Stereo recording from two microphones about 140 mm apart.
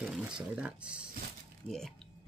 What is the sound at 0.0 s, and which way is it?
Speech, 5° right (ahead or behind).